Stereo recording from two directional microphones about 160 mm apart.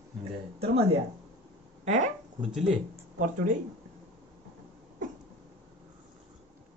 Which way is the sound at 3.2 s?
55° right (ahead or behind).